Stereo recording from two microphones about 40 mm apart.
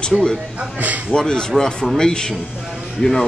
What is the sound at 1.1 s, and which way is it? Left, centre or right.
Speech, centre.